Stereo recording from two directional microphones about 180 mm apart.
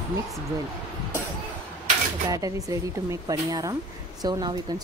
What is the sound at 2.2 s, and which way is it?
Speech, 20° right (ahead or behind).